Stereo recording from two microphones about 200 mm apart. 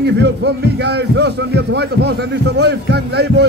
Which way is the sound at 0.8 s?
55° right (ahead or behind).